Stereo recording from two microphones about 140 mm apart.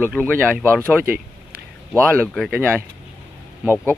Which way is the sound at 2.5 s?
15° right (ahead or behind).